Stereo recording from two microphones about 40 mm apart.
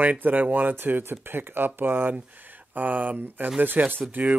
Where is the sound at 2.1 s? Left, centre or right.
Right.